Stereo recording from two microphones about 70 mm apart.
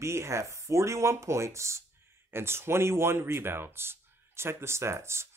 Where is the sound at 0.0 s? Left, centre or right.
Right.